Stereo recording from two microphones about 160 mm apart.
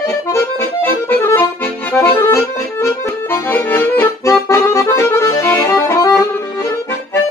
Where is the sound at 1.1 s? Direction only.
10° left (ahead or behind).